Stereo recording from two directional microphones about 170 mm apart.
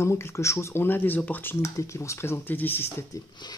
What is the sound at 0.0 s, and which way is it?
Speech, 15° left (ahead or behind).